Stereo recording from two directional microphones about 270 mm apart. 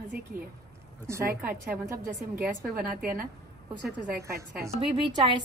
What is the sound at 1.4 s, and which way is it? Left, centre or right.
A woman's voice, centre.